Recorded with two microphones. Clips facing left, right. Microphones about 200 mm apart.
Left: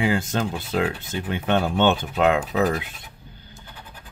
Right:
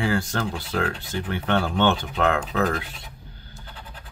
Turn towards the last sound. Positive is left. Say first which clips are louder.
# right 1 dB
turn(degrees=15)  # may be behind; listen again after turning